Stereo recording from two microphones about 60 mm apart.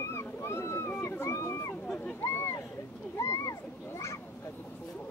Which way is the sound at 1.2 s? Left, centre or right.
Left.